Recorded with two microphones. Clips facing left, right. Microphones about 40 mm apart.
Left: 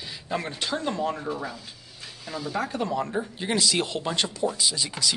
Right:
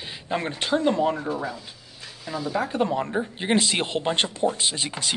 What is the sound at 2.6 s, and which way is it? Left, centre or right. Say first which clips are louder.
Speech: right 3 dB; right.